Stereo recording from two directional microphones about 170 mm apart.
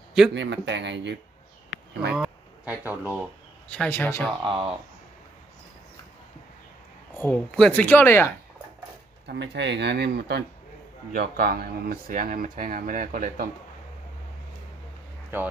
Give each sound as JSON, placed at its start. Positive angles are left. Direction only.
{"t": 0.3, "sound": "speech", "side_deg": -90}
{"t": 2.1, "sound": "speech", "side_deg": -10}
{"t": 3.6, "sound": "speech", "side_deg": 5}
{"t": 4.4, "sound": "speech", "side_deg": -30}
{"t": 7.2, "sound": "speech", "side_deg": 10}
{"t": 9.3, "sound": "speech", "side_deg": -85}
{"t": 15.3, "sound": "speech", "side_deg": -10}